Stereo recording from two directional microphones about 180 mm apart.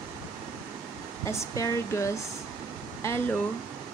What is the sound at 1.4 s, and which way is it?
Speech, 15° left (ahead or behind).